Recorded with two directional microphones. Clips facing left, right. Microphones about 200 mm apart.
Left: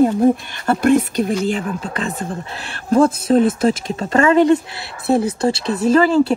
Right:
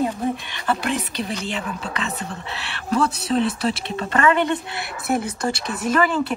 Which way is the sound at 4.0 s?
30° left (ahead or behind).